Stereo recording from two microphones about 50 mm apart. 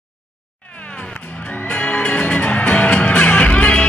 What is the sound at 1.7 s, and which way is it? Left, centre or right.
Music, left.